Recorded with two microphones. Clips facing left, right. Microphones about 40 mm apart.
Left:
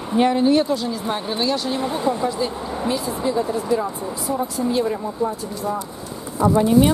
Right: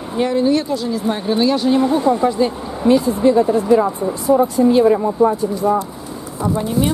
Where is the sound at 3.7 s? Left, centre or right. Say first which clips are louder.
Right 8 dB; centre.